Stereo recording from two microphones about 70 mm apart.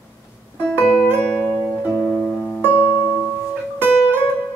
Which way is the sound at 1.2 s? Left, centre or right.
Centre.